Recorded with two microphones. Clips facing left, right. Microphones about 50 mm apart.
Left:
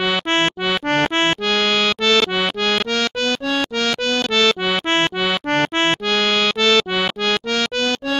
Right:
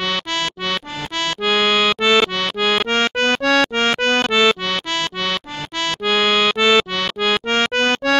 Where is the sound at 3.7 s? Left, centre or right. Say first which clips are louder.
Right 3 dB; right.